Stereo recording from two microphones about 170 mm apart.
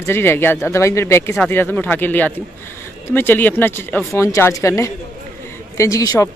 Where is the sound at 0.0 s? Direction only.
15° left (ahead or behind).